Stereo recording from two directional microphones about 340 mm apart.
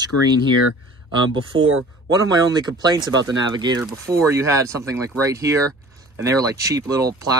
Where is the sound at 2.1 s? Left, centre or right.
Centre.